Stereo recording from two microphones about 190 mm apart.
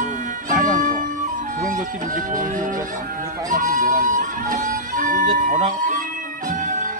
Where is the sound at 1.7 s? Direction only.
45° right (ahead or behind).